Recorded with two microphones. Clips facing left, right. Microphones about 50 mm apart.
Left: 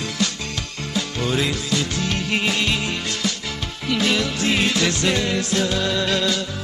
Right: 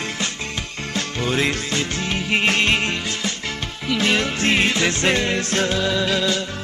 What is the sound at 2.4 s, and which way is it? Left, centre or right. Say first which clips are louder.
Music: right 3 dB; right.